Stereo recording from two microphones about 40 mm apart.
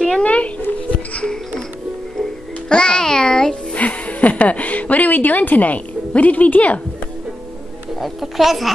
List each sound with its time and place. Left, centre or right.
0.2 s a sound: left
1.2 s music: centre
2.7 s music: left
3.7 s a woman's voice: left
8.0 s a child's voice: centre